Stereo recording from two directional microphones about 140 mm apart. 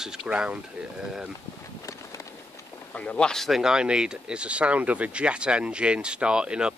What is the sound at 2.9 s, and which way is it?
Speech, 10° left (ahead or behind).